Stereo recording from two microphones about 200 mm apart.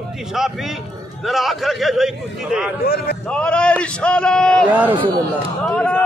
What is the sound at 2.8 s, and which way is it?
Speech, 50° left (ahead or behind).